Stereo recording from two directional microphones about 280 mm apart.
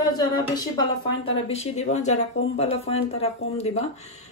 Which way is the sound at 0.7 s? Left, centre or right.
Left.